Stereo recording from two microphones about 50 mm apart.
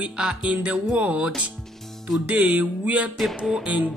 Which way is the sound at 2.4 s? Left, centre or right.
Right.